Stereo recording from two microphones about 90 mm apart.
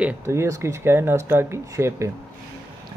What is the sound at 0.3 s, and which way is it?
Speech, 30° right (ahead or behind).